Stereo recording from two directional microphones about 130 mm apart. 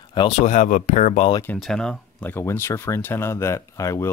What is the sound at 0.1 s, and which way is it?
Speech, 40° left (ahead or behind).